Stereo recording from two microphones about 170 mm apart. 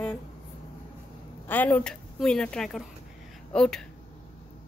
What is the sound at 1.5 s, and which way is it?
Speech, 10° left (ahead or behind).